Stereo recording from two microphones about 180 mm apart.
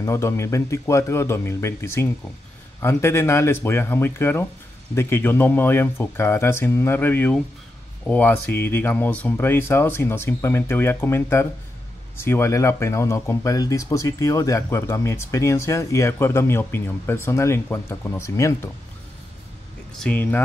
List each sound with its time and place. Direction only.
0.0 s speech: 15° left (ahead or behind)
20.0 s speech: 10° left (ahead or behind)